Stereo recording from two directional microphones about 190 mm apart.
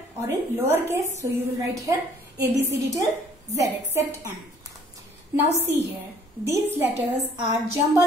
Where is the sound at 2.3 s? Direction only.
65° right (ahead or behind).